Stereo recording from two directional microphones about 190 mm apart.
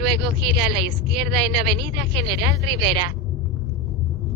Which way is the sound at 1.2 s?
60° right (ahead or behind).